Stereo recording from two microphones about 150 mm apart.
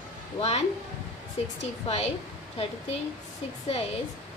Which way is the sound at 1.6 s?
45° left (ahead or behind).